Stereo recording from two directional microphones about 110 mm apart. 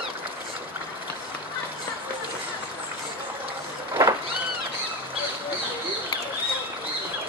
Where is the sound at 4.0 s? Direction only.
30° right (ahead or behind).